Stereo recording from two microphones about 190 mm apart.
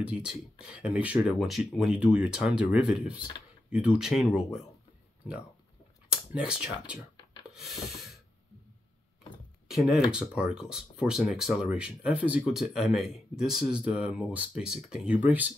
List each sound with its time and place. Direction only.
0.0 s speech: 5° right (ahead or behind)
6.0 s speech: 5° right (ahead or behind)
9.7 s speech: centre (ahead or behind)